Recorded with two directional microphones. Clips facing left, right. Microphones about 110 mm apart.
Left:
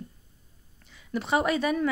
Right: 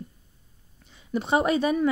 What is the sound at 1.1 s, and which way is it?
Speech, 20° right (ahead or behind).